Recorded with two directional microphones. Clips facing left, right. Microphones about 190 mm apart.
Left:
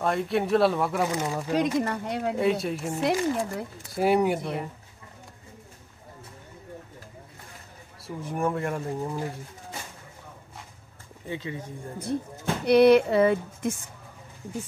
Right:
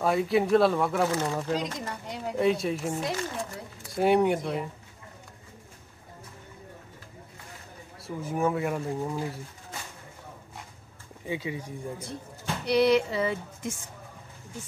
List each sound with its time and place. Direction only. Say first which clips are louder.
0.0 s speech: right 1 dB; 5° right (ahead or behind)
1.8 s speech: left 8 dB; 60° left (ahead or behind)
2.3 s speech: right 3 dB; centre (ahead or behind)
3.0 s speech: left 7 dB; 65° left (ahead or behind)
3.9 s speech: even; centre (ahead or behind)
8.0 s speech: right 1 dB; centre (ahead or behind)
11.2 s speech: right 1 dB; 10° right (ahead or behind)
12.6 s speech: left 5 dB; 55° left (ahead or behind)